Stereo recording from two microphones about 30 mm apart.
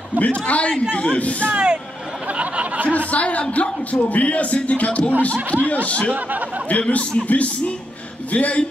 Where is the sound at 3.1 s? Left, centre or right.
Left.